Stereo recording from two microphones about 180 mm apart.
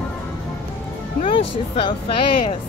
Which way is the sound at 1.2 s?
30° left (ahead or behind).